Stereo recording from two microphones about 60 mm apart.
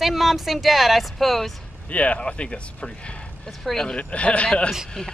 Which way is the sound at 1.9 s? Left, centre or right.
Left.